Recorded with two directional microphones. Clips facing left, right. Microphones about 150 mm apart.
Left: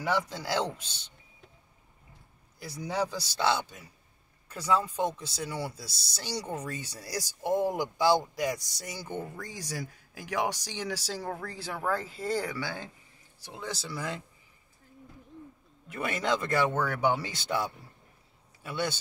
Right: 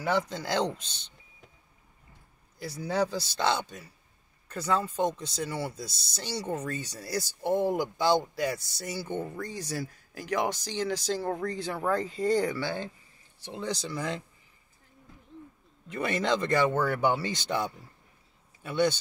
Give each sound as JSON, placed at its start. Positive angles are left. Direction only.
{"t": 0.3, "sound": "speech", "side_deg": 10}
{"t": 2.6, "sound": "speech", "side_deg": 10}
{"t": 13.8, "sound": "speech", "side_deg": 5}
{"t": 15.9, "sound": "speech", "side_deg": 10}